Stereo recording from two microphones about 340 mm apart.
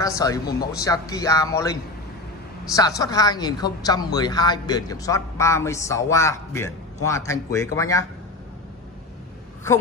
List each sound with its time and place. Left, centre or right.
0.0 s a woman's voice: centre
2.7 s a woman's voice: centre